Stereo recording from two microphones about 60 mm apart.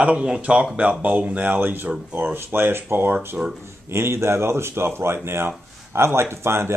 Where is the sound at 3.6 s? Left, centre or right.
Right.